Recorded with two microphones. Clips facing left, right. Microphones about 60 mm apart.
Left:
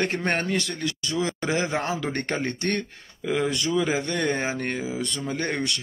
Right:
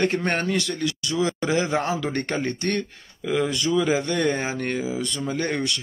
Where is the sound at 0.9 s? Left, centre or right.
Left.